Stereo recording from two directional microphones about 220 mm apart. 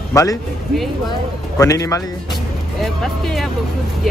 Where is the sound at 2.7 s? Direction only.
Centre (ahead or behind).